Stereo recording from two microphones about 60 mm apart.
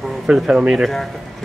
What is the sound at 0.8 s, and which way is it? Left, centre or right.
Speech, centre.